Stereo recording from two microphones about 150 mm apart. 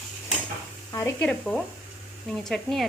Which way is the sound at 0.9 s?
20° left (ahead or behind).